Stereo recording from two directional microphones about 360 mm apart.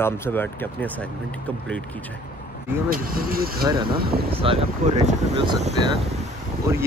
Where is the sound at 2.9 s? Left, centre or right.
Right.